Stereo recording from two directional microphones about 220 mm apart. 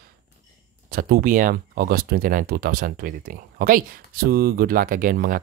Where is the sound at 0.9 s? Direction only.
40° right (ahead or behind).